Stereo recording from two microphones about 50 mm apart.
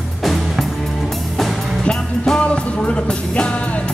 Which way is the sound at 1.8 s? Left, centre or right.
Centre.